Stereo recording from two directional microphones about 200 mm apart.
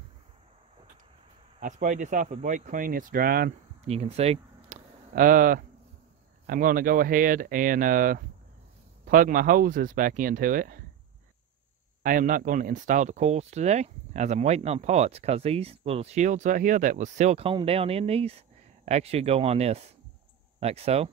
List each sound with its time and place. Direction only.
1.6 s speech: 40° right (ahead or behind)
3.8 s a sound: 30° right (ahead or behind)
6.4 s speech: 45° right (ahead or behind)
12.0 s speech: 45° right (ahead or behind)